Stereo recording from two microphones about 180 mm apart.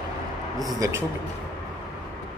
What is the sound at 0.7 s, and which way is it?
Speech, 20° right (ahead or behind).